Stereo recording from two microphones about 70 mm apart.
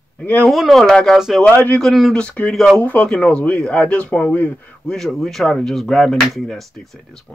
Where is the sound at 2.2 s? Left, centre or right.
Centre.